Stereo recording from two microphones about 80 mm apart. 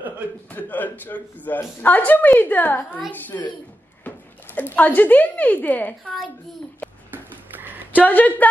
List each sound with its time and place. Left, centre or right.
0.5 s speech: left
4.6 s speech: left
7.1 s a sound: right
7.9 s speech: left